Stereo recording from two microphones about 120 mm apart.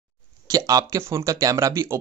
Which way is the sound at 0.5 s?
30° right (ahead or behind).